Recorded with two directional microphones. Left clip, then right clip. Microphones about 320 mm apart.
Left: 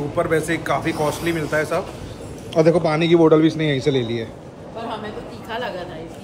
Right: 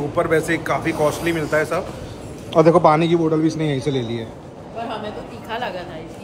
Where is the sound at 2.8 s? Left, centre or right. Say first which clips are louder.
Right 1 dB; centre.